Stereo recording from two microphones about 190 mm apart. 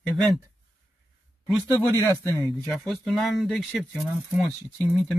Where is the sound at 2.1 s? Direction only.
15° left (ahead or behind).